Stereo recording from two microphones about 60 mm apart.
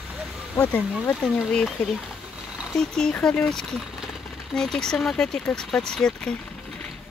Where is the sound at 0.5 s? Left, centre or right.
Left.